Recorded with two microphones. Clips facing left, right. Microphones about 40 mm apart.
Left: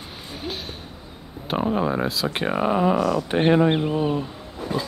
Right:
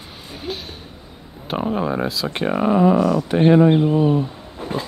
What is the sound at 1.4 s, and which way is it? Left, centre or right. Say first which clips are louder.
Speech: right 1 dB; centre.